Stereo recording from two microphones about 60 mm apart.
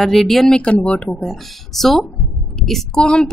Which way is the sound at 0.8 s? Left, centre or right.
Left.